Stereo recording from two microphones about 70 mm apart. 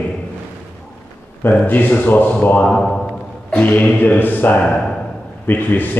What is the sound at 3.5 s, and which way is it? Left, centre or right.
A man's voice, left.